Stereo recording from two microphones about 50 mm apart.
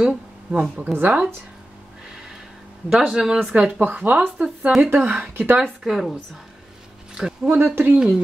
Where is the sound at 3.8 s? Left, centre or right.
Right.